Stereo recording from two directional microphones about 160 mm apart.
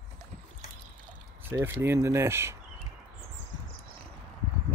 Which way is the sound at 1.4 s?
15° right (ahead or behind).